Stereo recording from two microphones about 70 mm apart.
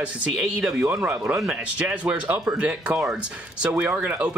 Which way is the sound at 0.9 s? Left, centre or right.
Right.